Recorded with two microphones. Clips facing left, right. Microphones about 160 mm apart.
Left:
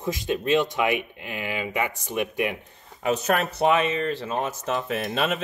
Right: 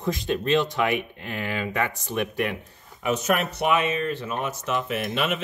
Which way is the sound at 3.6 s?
30° left (ahead or behind).